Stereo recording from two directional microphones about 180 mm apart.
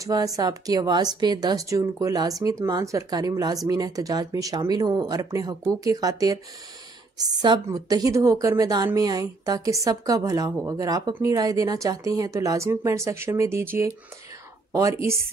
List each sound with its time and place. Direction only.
0.0 s a woman's voice: 20° right (ahead or behind)